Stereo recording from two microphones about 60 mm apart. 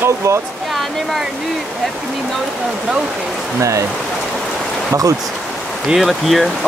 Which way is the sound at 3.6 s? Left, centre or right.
Right.